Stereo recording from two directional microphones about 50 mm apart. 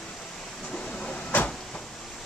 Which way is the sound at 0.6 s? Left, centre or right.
Centre.